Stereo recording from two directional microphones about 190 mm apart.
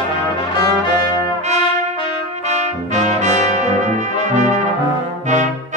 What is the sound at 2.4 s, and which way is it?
Brass instrument, 40° right (ahead or behind).